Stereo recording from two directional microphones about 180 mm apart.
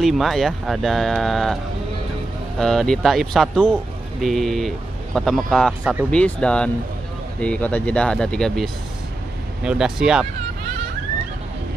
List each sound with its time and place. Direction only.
0.0 s speech: centre (ahead or behind)
2.6 s speech: centre (ahead or behind)